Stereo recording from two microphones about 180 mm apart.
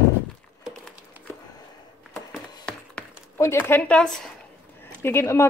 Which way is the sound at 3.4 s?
15° left (ahead or behind).